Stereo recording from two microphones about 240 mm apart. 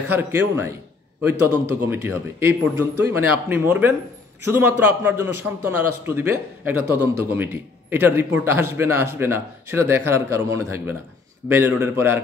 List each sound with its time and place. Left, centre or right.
0.1 s a man's voice: centre
1.9 s a man's voice: centre